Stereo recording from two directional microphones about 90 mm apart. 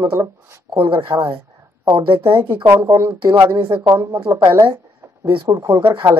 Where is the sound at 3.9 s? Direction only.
30° right (ahead or behind).